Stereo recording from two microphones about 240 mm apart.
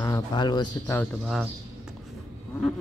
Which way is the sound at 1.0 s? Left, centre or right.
Centre.